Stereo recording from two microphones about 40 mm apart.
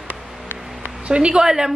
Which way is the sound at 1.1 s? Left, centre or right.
Right.